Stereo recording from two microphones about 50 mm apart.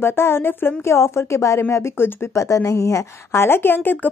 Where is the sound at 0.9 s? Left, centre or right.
Left.